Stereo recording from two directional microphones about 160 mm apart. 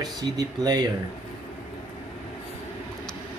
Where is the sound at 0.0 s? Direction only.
25° right (ahead or behind).